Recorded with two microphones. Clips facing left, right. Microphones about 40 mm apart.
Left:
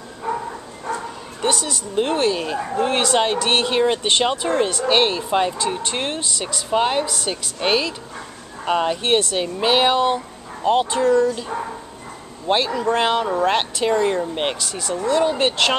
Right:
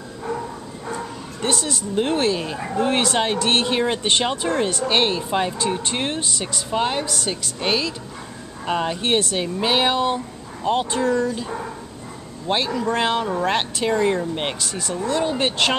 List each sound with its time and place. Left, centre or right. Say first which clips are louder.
0.3 s dog: left 3 dB; left
1.4 s speech: left 2 dB; centre
6.7 s speech: left 3 dB; centre
12.4 s speech: left 3 dB; centre